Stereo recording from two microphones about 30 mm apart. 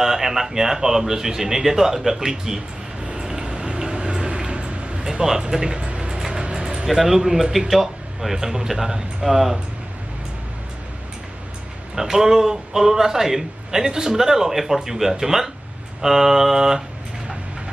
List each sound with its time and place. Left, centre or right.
0.0 s a man's voice: centre
3.2 s a sound: right
4.5 s vehicle: right
5.0 s a sound: centre
5.5 s speech: right
5.8 s a sound: right
6.0 s music: centre
6.4 s vehicle: right
6.9 s a man's voice: centre
11.9 s a man's voice: centre